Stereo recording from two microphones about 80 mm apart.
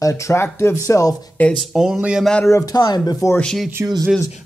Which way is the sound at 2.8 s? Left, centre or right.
Left.